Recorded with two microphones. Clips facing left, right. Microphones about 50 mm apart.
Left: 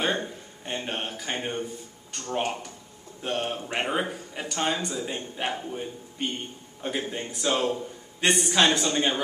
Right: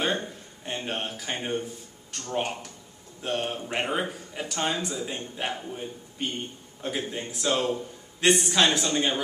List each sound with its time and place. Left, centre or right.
0.0 s speech: centre